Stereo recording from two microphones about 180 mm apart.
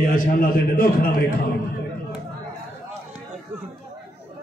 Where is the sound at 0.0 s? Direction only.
50° left (ahead or behind).